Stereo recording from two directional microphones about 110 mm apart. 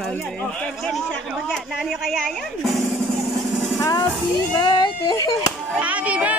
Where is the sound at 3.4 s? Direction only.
Centre (ahead or behind).